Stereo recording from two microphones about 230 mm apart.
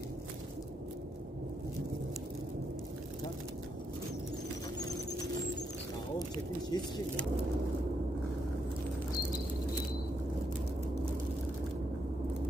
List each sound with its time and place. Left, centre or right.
6.7 s speech: centre